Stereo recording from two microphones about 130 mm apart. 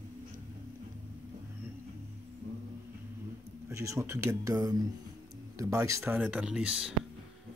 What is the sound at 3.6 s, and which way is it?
Speech, 20° right (ahead or behind).